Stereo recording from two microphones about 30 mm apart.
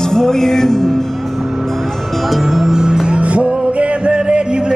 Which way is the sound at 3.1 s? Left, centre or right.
Right.